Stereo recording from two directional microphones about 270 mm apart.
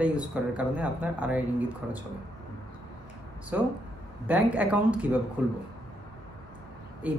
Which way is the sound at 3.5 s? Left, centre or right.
Centre.